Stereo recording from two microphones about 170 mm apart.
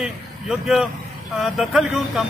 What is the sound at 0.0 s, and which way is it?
Speech, centre (ahead or behind).